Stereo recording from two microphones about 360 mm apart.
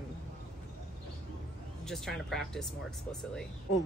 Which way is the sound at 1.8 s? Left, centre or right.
Centre.